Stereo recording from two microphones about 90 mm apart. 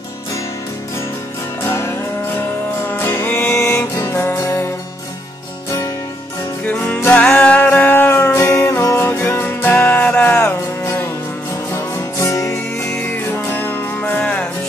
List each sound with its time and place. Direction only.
1.6 s music: 30° left (ahead or behind)
3.5 s music: 35° left (ahead or behind)
6.6 s music: 10° left (ahead or behind)
7.0 s music: 25° left (ahead or behind)
11.7 s music: 35° left (ahead or behind)
12.9 s music: 20° left (ahead or behind)